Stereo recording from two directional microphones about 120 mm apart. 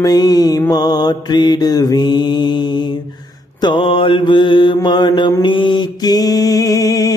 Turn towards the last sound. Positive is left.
turn(degrees=30)  # may be behind; listen again after turning